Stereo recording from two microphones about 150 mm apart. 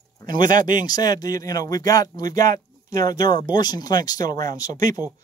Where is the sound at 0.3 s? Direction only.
65° right (ahead or behind).